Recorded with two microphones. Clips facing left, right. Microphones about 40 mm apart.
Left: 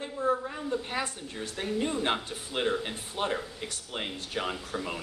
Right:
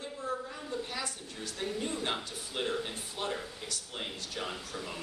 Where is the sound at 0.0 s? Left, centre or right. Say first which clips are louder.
Left 8 dB; left.